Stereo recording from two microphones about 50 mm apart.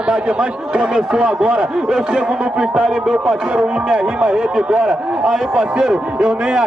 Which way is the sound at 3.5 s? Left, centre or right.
Centre.